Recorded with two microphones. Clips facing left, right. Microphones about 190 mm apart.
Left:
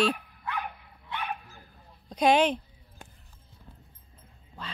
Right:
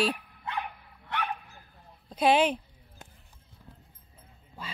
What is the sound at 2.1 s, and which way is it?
Speech, 5° right (ahead or behind).